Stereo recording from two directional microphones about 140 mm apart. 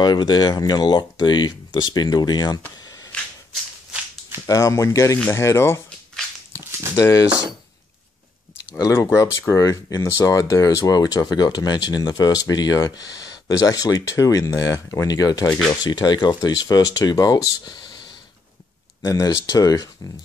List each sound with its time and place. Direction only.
0.0 s speech: 30° left (ahead or behind)
4.5 s speech: 20° left (ahead or behind)
7.0 s speech: 25° left (ahead or behind)
8.7 s speech: 20° left (ahead or behind)
19.0 s speech: 25° left (ahead or behind)